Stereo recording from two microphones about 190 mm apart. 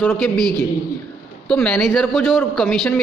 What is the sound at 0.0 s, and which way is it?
Speech, 10° left (ahead or behind).